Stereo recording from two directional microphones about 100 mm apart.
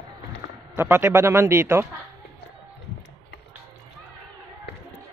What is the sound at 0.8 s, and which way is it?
A man's voice, 25° right (ahead or behind).